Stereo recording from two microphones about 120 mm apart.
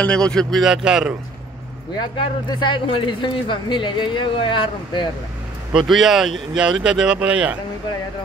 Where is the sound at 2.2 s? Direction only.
40° left (ahead or behind).